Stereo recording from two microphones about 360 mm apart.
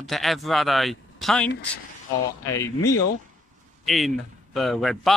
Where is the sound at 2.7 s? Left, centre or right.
Left.